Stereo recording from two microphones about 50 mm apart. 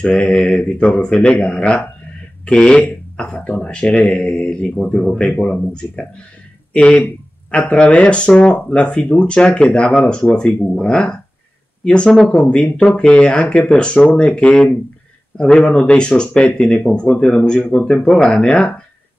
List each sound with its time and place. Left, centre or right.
0.0 s speech: left